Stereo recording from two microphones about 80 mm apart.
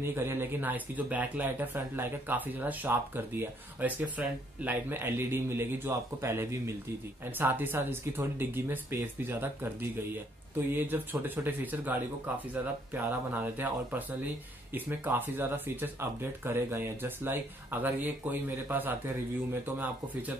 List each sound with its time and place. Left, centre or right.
0.0 s speech: right